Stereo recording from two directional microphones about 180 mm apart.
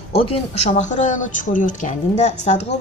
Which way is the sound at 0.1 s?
35° left (ahead or behind).